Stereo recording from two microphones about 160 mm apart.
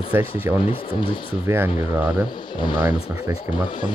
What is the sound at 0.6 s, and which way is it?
Speech, 35° left (ahead or behind).